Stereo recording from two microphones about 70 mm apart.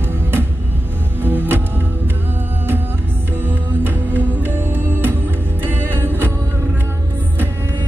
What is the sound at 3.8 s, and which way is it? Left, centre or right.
Music, right.